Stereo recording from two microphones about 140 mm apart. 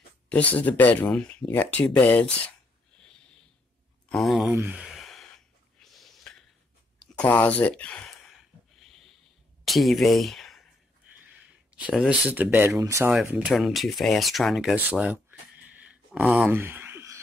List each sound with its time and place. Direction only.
0.3 s speech: 10° left (ahead or behind)
4.1 s speech: centre (ahead or behind)
4.5 s sigh: 15° right (ahead or behind)
5.8 s a sound: centre (ahead or behind)
7.2 s speech: 10° left (ahead or behind)
9.7 s speech: centre (ahead or behind)
11.2 s a sound: 10° right (ahead or behind)
12.3 s speech: 15° right (ahead or behind)
13.1 s speech: 5° right (ahead or behind)
15.7 s a sound: 10° right (ahead or behind)
16.5 s owl: 15° right (ahead or behind)